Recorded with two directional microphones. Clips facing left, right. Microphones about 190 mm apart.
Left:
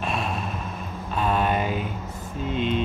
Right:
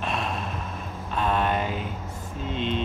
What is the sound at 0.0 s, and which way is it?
Vehicle, 5° left (ahead or behind).